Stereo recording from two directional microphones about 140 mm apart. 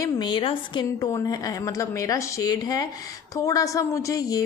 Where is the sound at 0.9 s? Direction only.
25° left (ahead or behind).